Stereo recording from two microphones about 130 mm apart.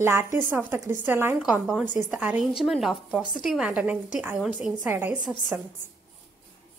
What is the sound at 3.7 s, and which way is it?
Speech, 10° right (ahead or behind).